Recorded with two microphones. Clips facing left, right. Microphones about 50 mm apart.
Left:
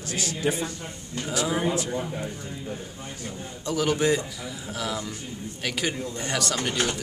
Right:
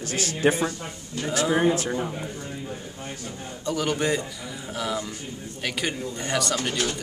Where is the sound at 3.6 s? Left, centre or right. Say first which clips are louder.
Left 2 dB; centre.